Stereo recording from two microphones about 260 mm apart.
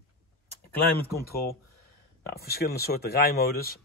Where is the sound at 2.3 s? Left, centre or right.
Left.